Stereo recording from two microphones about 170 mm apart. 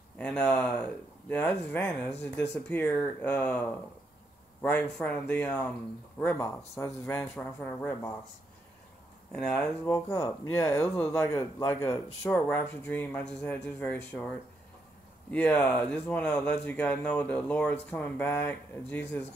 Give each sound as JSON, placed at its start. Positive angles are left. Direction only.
{"t": 0.2, "sound": "a man's voice", "side_deg": 5}
{"t": 9.3, "sound": "speech", "side_deg": 5}
{"t": 15.3, "sound": "speech", "side_deg": 10}